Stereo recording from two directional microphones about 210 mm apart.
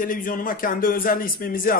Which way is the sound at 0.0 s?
40° left (ahead or behind).